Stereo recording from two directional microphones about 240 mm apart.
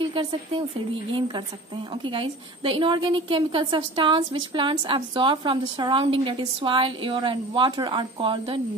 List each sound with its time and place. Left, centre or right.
0.0 s speech: right
2.0 s a woman's voice: right